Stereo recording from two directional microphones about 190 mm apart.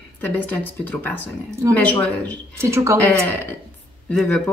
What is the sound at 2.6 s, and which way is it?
Speech, 15° right (ahead or behind).